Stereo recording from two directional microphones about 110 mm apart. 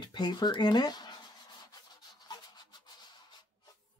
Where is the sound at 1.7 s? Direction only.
35° left (ahead or behind).